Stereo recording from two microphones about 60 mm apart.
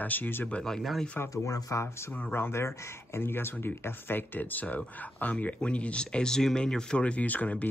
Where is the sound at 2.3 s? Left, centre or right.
Left.